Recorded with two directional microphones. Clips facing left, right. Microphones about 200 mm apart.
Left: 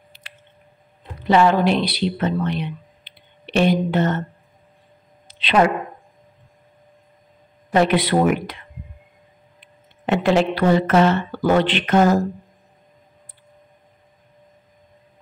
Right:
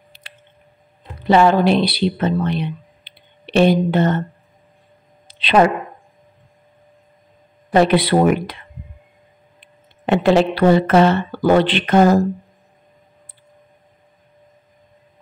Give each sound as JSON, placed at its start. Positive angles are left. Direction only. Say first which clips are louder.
{"t": 0.1, "sound": "squish", "louder": "right 3 dB", "side_deg": -30}
{"t": 1.2, "sound": "speech", "louder": "right 2 dB", "side_deg": -30}
{"t": 5.3, "sound": "speech", "louder": "right 3 dB", "side_deg": -30}
{"t": 7.7, "sound": "speech", "louder": "right 3 dB", "side_deg": -35}
{"t": 10.0, "sound": "speech", "louder": "right 3 dB", "side_deg": -30}